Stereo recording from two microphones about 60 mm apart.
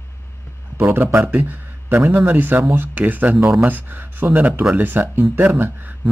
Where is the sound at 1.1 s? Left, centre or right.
Right.